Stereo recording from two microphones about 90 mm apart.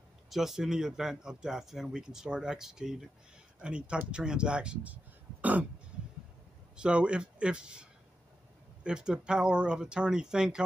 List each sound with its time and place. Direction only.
0.3 s speech: 5° right (ahead or behind)
5.4 s throat clearing: 15° right (ahead or behind)
6.8 s speech: 10° right (ahead or behind)